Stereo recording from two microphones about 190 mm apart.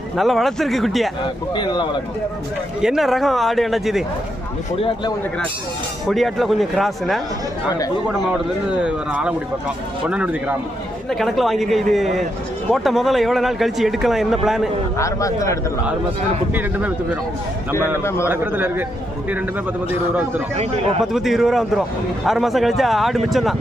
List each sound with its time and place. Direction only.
0.2 s a man's voice: centre (ahead or behind)
1.2 s speech: 25° left (ahead or behind)
2.8 s a man's voice: centre (ahead or behind)
4.7 s speech: 30° left (ahead or behind)
6.0 s a man's voice: centre (ahead or behind)
8.3 s a man's voice: 5° right (ahead or behind)
15.0 s a man's voice: 15° left (ahead or behind)
17.7 s a man's voice: 15° left (ahead or behind)
18.3 s a man's voice: 10° right (ahead or behind)
21.0 s a man's voice: centre (ahead or behind)